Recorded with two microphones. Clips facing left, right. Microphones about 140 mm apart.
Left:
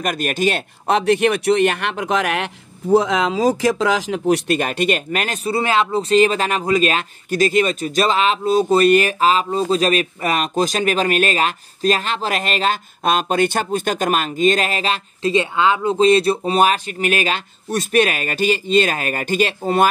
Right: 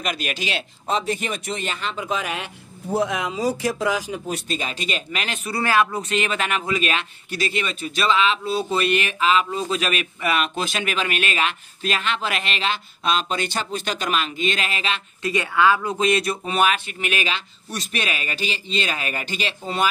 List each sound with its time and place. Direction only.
0.0 s speech: 50° left (ahead or behind)
0.8 s speech: 70° left (ahead or behind); by 5.4 s 50° left (ahead or behind)
5.4 s speech: 25° left (ahead or behind); by 15.3 s 40° left (ahead or behind)
15.3 s speech: 25° left (ahead or behind); by 19.9 s 50° left (ahead or behind)